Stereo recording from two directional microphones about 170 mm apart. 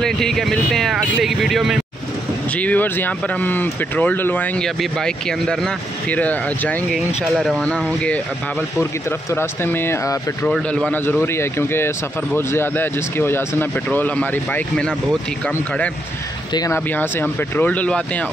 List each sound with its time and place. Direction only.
0.0 s speech: 5° left (ahead or behind)
2.5 s speech: 10° left (ahead or behind)
9.3 s speech: 15° left (ahead or behind)
16.5 s speech: 15° left (ahead or behind)